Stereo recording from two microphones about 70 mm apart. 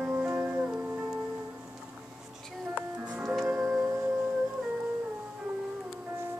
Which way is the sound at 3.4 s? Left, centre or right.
Right.